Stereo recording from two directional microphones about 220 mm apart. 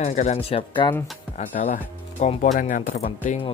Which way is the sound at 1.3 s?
35° left (ahead or behind).